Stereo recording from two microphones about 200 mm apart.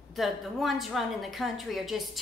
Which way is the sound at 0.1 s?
Centre (ahead or behind).